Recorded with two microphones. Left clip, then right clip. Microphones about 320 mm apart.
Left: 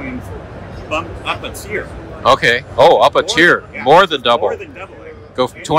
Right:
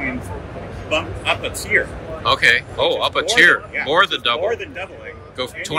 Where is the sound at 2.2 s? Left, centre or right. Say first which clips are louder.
Left 3 dB; centre.